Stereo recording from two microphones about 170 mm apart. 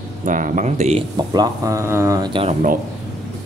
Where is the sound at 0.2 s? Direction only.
50° right (ahead or behind).